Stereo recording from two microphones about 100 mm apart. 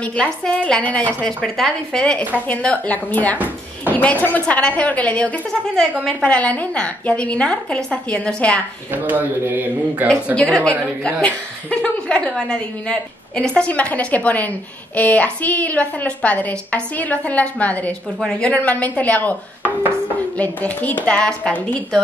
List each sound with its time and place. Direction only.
0.0 s a woman's voice: 10° left (ahead or behind)
3.3 s a sound: 20° right (ahead or behind)
3.9 s a woman's voice: 15° left (ahead or behind)
8.9 s speech: 20° right (ahead or behind)
10.3 s a woman's voice: 10° left (ahead or behind)
20.3 s a woman's voice: 15° left (ahead or behind)